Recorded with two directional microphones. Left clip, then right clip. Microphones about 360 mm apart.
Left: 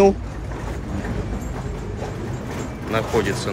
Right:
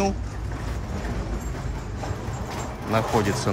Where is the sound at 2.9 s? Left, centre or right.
Centre.